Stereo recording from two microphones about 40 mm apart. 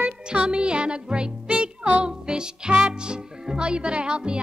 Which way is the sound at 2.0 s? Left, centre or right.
Right.